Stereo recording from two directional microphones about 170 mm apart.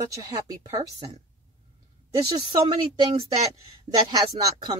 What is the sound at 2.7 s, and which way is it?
Speech, 30° right (ahead or behind).